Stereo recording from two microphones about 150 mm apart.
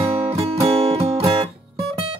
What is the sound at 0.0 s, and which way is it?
Guitar, 40° right (ahead or behind).